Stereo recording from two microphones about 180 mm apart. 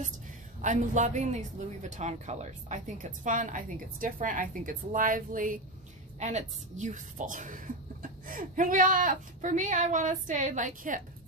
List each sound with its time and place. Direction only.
0.6 s speech: 45° right (ahead or behind)